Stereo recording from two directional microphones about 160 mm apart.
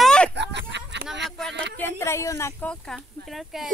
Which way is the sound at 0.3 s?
90° right.